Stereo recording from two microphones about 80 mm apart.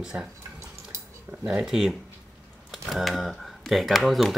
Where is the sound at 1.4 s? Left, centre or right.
Centre.